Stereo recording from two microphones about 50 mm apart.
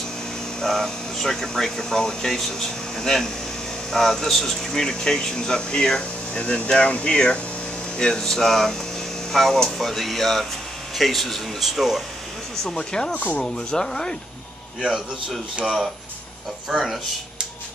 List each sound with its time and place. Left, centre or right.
0.6 s speech: centre
12.6 s speech: centre
13.1 s speech: left
13.4 s speech: centre
14.8 s speech: centre
16.7 s speech: centre